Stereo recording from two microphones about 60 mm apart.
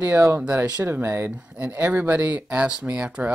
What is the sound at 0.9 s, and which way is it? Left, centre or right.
Speech, right.